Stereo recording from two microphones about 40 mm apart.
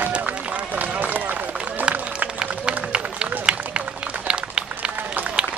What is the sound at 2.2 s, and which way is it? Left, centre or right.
Run, right.